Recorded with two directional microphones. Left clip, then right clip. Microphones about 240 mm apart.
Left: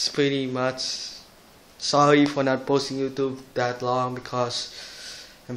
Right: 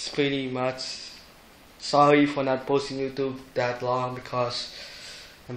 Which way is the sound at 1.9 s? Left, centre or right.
Centre.